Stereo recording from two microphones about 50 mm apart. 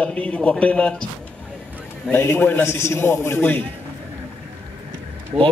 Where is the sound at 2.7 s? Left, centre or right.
Left.